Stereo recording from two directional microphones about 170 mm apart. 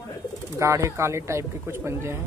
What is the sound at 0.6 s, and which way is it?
Speech, 15° right (ahead or behind).